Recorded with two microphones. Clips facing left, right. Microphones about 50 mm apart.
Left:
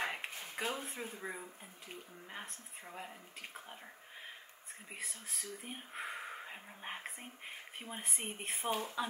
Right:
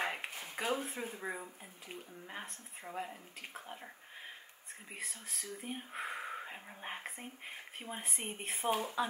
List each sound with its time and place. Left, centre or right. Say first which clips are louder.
0.0 s a sound: right 1 dB; centre
1.1 s speech: right 2 dB; centre
4.9 s speech: right 1 dB; centre
8.7 s speech: right 2 dB; centre